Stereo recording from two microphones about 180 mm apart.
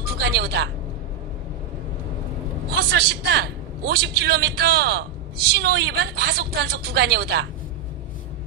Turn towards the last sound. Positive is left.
turn(degrees=-65)  # may be behind; listen again after turning